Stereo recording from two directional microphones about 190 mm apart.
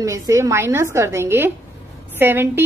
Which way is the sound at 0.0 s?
15° right (ahead or behind).